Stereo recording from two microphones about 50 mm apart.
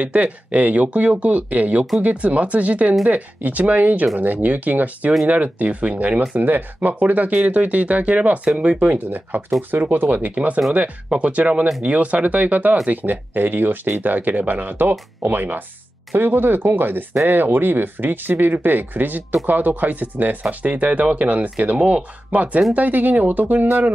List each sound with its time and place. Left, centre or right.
0.0 s speech: right
6.3 s speech: right